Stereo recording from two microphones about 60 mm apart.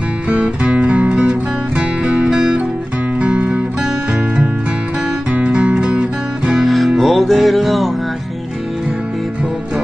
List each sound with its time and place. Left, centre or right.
0.3 s music: centre
5.3 s music: right
6.6 s music: centre